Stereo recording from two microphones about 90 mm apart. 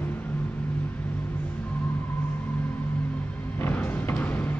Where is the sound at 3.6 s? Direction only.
20° left (ahead or behind).